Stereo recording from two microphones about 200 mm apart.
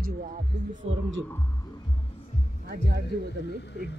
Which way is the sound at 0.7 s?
75° right (ahead or behind).